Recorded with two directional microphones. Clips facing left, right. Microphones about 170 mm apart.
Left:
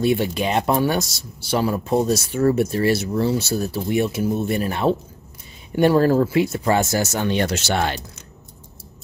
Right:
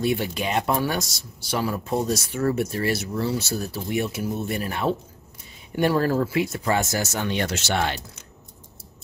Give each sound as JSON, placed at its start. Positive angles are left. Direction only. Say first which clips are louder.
{"t": 0.0, "sound": "speech", "louder": "left 5 dB", "side_deg": 25}